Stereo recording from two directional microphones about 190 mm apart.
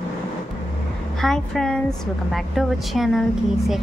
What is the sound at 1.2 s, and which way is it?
A woman's voice, centre (ahead or behind).